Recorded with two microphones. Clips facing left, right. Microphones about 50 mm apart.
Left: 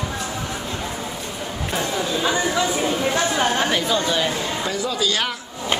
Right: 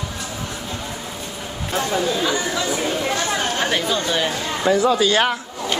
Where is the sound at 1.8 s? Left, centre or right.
Left.